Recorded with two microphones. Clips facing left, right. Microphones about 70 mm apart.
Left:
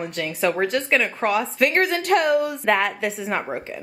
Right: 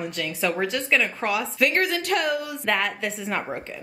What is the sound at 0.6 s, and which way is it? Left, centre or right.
A woman's voice, centre.